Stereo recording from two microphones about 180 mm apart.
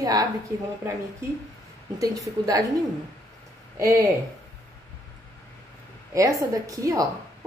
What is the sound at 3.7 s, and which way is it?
Speech, 15° right (ahead or behind).